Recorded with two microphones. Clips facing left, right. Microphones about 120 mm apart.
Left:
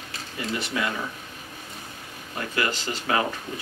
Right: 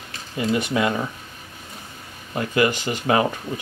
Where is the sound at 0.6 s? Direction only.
20° right (ahead or behind).